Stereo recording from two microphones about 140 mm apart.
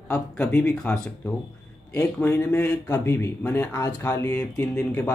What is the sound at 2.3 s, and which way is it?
Speech, 15° left (ahead or behind).